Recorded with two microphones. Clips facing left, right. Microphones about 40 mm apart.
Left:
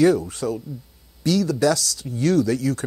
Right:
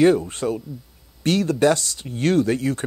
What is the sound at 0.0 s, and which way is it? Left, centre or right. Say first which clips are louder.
Speech: right 1 dB; right.